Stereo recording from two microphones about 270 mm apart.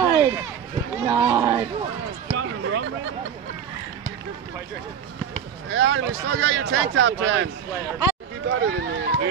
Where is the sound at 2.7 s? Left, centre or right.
Right.